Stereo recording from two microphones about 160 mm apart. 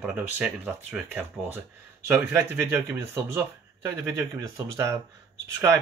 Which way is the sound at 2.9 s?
15° right (ahead or behind).